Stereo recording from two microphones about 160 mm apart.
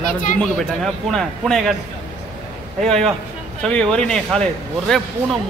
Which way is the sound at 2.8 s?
5° left (ahead or behind).